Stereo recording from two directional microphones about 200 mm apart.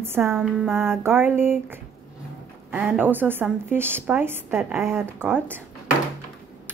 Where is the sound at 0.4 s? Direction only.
Centre (ahead or behind).